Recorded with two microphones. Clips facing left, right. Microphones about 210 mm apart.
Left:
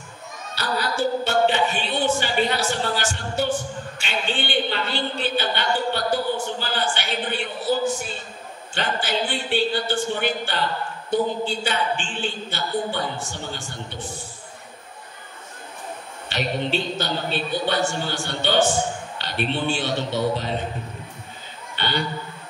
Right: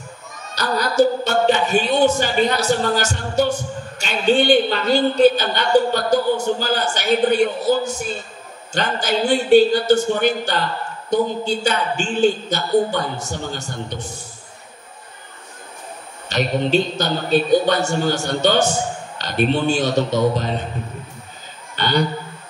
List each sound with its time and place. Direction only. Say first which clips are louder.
0.6 s a man's voice: right 8 dB; 40° right (ahead or behind)
16.3 s a man's voice: right 6 dB; 45° right (ahead or behind)
21.7 s a man's voice: right 7 dB; 40° right (ahead or behind)